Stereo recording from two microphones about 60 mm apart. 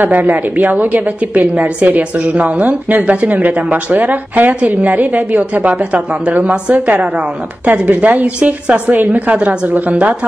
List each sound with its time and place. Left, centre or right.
0.0 s a woman's voice: right